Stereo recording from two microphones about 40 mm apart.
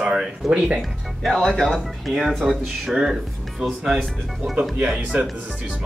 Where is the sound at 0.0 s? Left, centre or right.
Centre.